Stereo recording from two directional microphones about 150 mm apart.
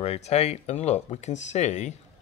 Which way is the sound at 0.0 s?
45° left (ahead or behind).